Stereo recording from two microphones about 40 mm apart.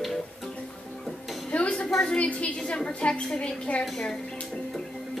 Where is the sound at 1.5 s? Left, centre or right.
Left.